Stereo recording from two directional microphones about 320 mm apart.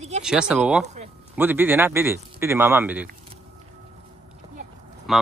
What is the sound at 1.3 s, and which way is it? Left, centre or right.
A man's voice, centre.